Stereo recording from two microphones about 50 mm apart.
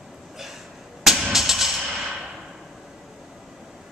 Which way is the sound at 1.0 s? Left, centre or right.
Centre.